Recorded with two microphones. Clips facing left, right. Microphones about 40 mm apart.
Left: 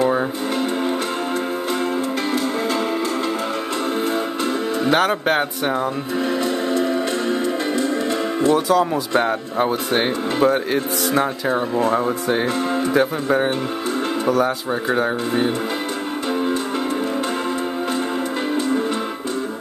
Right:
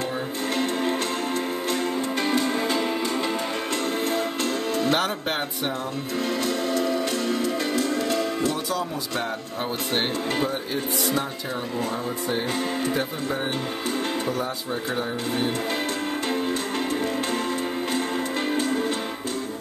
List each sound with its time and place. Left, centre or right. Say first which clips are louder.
4.8 s speech: left 9 dB; centre
6.4 s music: left 4 dB; left
9.1 s speech: left 9 dB; left
10.4 s speech: left 9 dB; left
12.9 s speech: left 9 dB; left